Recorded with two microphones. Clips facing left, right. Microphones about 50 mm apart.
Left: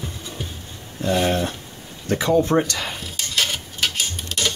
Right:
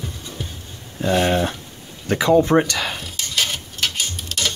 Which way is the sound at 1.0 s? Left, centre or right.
Right.